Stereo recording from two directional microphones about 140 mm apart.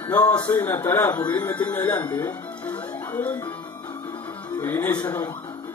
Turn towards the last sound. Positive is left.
turn(degrees=10)  # may be behind; listen again after turning